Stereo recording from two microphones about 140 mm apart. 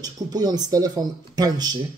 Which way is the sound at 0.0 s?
30° right (ahead or behind).